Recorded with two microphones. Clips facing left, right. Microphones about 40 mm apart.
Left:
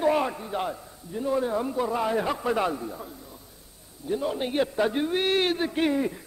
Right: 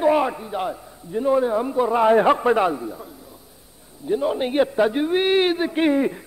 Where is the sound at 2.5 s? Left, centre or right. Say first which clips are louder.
Right 6 dB; centre.